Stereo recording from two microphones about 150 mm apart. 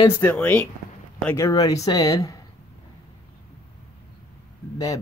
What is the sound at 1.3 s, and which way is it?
Speech, 20° left (ahead or behind).